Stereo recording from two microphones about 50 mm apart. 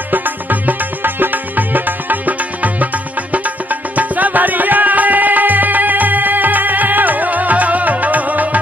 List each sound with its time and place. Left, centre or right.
0.1 s music: right